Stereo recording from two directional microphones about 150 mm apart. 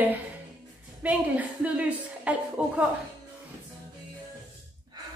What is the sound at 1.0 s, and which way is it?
A woman's voice, 10° right (ahead or behind).